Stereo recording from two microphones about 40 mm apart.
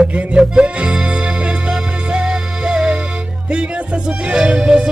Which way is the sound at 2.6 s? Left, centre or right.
Centre.